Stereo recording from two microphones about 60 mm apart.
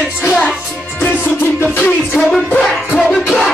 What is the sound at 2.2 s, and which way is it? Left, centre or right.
Music, centre.